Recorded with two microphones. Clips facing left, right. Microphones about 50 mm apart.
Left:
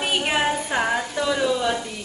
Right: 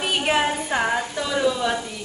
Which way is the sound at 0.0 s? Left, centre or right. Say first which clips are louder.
Right 1 dB; centre.